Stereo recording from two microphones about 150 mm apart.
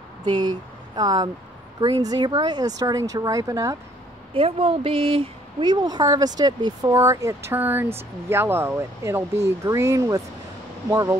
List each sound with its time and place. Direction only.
0.2 s speech: 30° right (ahead or behind)
4.3 s speech: 40° right (ahead or behind); by 11.1 s 20° right (ahead or behind)